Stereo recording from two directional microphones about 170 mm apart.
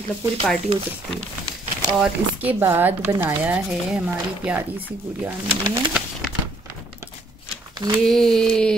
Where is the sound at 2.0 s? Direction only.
10° right (ahead or behind).